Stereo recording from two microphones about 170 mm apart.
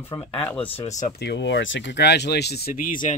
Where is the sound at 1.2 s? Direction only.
85° left; by 3.2 s 50° left (ahead or behind).